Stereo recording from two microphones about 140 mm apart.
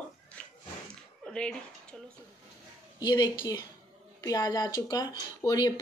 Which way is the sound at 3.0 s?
25° left (ahead or behind).